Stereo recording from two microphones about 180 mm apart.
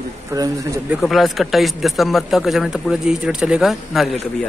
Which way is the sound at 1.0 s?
Centre (ahead or behind).